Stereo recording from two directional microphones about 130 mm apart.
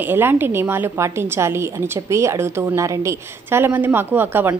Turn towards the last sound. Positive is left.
turn(degrees=-15)  # may be behind; listen again after turning